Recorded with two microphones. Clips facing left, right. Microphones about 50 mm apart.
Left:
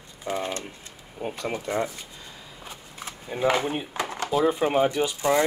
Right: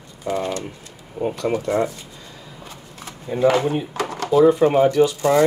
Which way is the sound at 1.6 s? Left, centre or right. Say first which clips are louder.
Right 5 dB; right.